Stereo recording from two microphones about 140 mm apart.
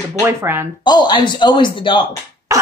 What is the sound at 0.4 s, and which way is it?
Speech, 15° right (ahead or behind).